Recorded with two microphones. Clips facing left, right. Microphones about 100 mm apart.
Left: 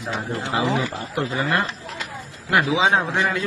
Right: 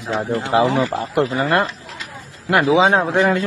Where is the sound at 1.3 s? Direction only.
40° right (ahead or behind).